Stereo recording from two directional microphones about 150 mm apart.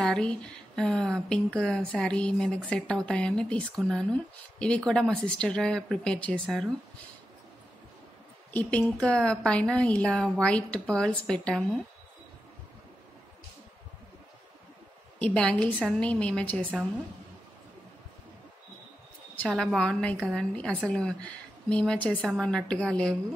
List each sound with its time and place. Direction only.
0.0 s a woman's voice: 5° left (ahead or behind)
8.5 s a woman's voice: 10° left (ahead or behind)
15.1 s a woman's voice: 5° left (ahead or behind)
19.4 s a woman's voice: 5° left (ahead or behind)